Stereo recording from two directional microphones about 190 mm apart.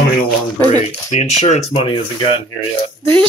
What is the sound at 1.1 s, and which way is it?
Speech, 35° left (ahead or behind).